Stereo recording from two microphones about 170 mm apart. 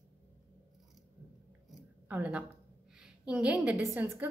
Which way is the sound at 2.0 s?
10° right (ahead or behind).